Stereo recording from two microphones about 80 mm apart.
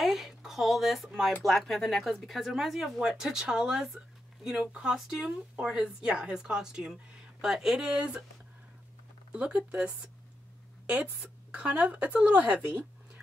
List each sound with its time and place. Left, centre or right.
0.0 s a sound: centre
1.4 s speech: centre
9.3 s speech: centre
11.5 s speech: centre